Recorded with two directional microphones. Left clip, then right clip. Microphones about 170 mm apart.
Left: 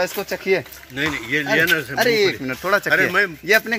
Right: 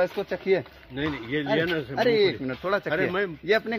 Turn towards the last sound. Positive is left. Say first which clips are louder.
# left 7 dB
turn(degrees=15)  # may be behind; listen again after turning